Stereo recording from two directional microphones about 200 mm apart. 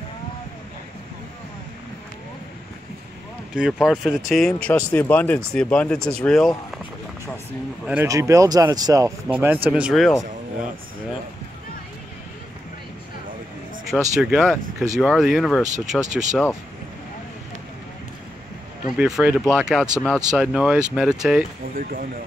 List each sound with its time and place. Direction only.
3.5 s speech: 5° right (ahead or behind)
7.8 s speech: 10° right (ahead or behind)
13.9 s speech: centre (ahead or behind)
15.6 s speech: 35° right (ahead or behind)
18.9 s speech: 5° right (ahead or behind)